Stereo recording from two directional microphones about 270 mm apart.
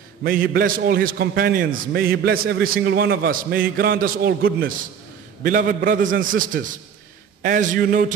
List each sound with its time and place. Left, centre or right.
0.2 s a man's voice: right